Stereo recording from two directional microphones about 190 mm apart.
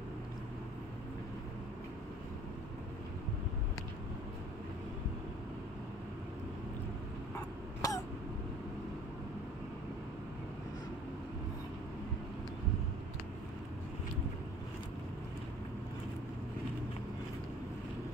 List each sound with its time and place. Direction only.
7.8 s throat clearing: 15° left (ahead or behind)